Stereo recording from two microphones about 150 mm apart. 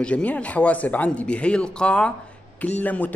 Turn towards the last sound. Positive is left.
turn(degrees=10)  # may be behind; listen again after turning